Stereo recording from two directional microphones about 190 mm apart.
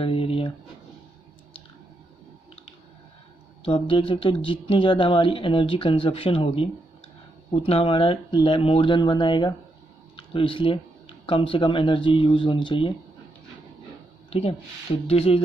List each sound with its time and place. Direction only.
0.0 s a sound: 30° left (ahead or behind)
3.6 s speech: 25° left (ahead or behind)
14.3 s speech: 30° left (ahead or behind)